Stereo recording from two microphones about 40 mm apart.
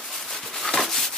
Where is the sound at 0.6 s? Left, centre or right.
Centre.